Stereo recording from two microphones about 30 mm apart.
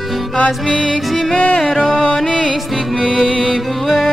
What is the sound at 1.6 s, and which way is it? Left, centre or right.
Music, centre.